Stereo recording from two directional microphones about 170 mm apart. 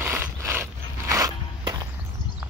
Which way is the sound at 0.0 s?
15° right (ahead or behind).